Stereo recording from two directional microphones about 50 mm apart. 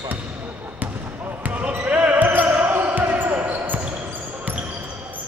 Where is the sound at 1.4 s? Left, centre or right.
Right.